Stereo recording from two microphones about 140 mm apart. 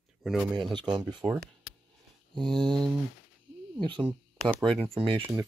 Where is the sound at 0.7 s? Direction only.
30° right (ahead or behind).